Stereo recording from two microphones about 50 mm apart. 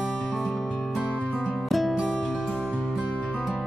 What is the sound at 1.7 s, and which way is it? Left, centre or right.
Music, centre.